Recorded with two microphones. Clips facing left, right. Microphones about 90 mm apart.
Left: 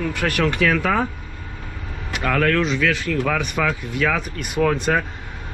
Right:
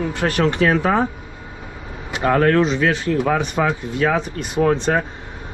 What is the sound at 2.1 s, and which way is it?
Speech, 30° right (ahead or behind).